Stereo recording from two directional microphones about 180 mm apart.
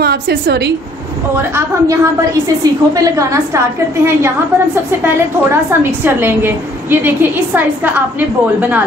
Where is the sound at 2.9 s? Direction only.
20° right (ahead or behind).